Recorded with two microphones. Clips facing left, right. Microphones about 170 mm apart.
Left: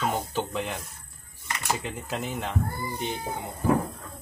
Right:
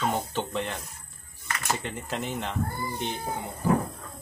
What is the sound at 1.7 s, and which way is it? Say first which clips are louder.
Speech: left 1 dB; 5° left (ahead or behind).